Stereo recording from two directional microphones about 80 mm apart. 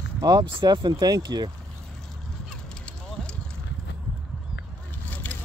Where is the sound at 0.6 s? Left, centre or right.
Right.